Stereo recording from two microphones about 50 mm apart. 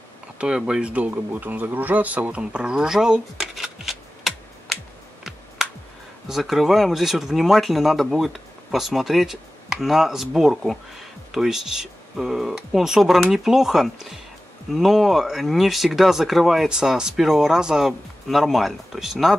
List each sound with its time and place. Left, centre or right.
0.4 s speech: centre
1.0 s speech: right
2.4 s speech: centre
3.8 s a sound: centre
6.2 s speech: centre
16.6 s speech: centre